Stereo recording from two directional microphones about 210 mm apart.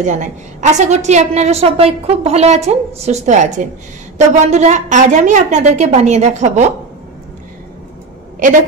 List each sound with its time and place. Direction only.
0.0 s a woman's voice: 35° right (ahead or behind)